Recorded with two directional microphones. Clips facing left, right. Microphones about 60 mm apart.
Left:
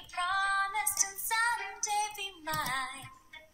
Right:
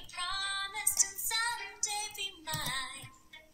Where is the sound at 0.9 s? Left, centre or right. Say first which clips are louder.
Left 6 dB; left.